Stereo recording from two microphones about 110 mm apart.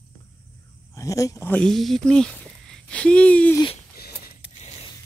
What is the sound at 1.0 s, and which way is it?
Speech, 30° left (ahead or behind).